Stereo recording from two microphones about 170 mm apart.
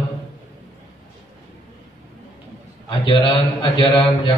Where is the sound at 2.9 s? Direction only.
30° left (ahead or behind).